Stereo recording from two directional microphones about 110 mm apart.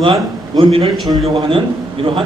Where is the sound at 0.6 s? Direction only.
55° right (ahead or behind).